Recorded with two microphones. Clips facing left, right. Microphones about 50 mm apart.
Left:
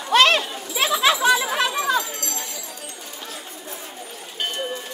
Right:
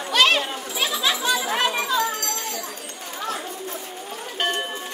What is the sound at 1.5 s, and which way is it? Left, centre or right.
Children playing, right.